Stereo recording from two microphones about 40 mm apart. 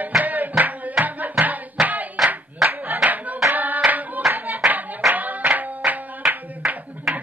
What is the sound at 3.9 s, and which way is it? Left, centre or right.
Clapping, right.